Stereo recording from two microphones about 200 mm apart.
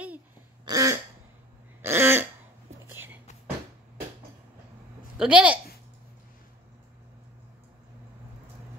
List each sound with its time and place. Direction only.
0.7 s throat clearing: 15° right (ahead or behind)
2.9 s a sound: 10° right (ahead or behind)
5.1 s speech: 5° right (ahead or behind)